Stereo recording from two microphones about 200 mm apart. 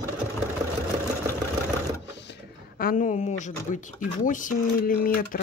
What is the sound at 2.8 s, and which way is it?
Speech, 45° left (ahead or behind).